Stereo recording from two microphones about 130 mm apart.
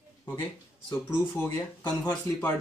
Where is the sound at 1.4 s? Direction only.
30° left (ahead or behind).